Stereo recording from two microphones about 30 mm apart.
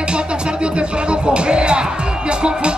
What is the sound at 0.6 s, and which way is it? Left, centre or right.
Speech, right.